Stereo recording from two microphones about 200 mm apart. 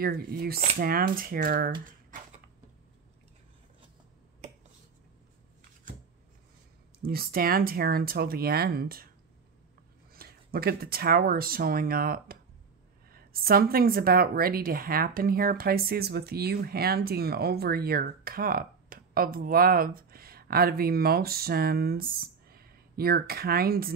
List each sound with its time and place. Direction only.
0.0 s a woman's voice: 50° right (ahead or behind)
7.0 s a woman's voice: 50° right (ahead or behind)
10.1 s a woman's voice: 50° right (ahead or behind)